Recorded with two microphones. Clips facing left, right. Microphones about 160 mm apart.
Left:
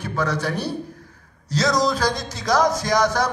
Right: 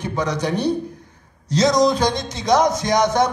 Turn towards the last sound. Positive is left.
turn(degrees=-20)  # may be behind; listen again after turning